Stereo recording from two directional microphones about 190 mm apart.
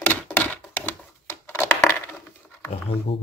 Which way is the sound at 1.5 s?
10° left (ahead or behind).